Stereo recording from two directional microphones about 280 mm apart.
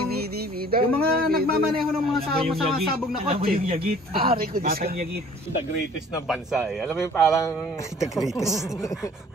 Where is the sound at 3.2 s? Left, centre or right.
Right.